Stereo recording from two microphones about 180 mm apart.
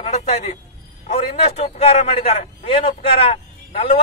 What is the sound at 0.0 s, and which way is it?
A man's voice, 35° left (ahead or behind).